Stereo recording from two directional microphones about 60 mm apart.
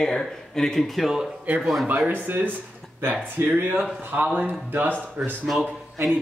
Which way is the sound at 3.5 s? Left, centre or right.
Right.